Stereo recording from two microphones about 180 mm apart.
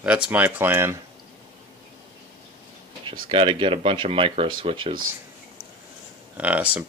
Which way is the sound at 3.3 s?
30° right (ahead or behind).